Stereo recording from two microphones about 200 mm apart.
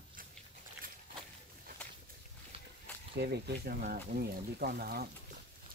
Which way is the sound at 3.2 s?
55° right (ahead or behind).